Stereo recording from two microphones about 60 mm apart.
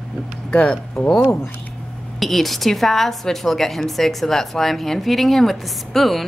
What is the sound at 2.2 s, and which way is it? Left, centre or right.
A woman's voice, centre.